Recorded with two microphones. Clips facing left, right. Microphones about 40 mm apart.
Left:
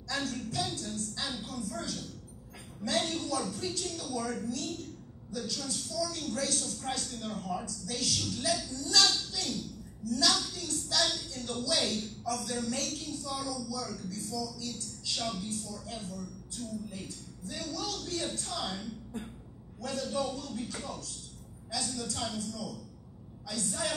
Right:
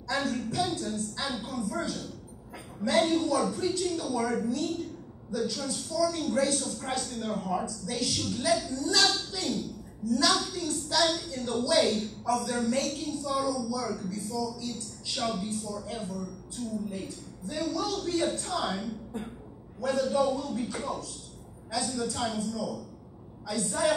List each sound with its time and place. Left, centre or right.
0.1 s a woman's voice: centre